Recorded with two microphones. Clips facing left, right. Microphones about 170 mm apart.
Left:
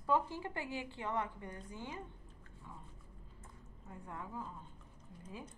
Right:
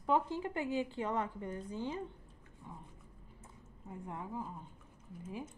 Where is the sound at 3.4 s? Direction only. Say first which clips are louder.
Right 4 dB; 25° right (ahead or behind).